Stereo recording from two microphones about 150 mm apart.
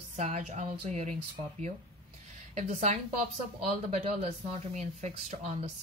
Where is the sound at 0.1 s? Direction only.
50° right (ahead or behind).